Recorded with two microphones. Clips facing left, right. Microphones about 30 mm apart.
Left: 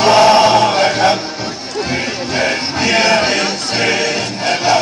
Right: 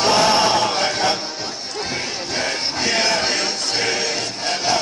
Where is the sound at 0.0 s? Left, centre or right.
Left.